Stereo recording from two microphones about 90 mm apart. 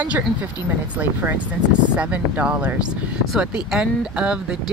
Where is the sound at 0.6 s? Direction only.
45° left (ahead or behind).